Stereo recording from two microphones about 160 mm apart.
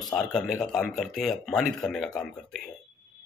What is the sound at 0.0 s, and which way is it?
Speech, centre (ahead or behind).